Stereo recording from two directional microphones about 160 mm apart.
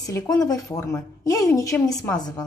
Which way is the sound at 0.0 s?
20° left (ahead or behind).